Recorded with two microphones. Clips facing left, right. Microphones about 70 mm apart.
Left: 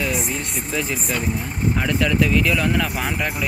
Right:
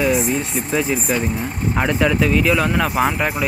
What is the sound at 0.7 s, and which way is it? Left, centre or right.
Speech, centre.